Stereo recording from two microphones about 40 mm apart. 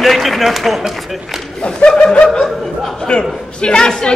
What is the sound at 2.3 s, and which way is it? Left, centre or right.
Speech, centre.